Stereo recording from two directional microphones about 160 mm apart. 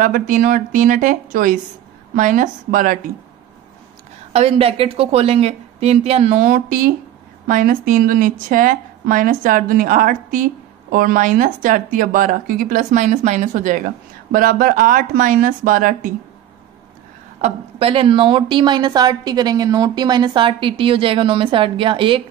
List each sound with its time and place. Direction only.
0.0 s a woman's voice: 55° right (ahead or behind)
4.3 s a woman's voice: 40° right (ahead or behind); by 16.1 s 55° right (ahead or behind)
17.4 s a woman's voice: 35° right (ahead or behind)